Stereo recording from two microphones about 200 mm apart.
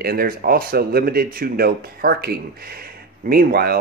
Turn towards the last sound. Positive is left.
turn(degrees=-50)  # may be behind; listen again after turning